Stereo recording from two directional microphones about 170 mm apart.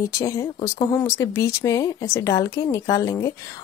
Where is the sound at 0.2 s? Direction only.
20° left (ahead or behind).